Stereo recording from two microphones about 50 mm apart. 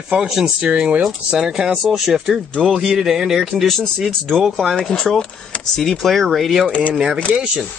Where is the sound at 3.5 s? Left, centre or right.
Centre.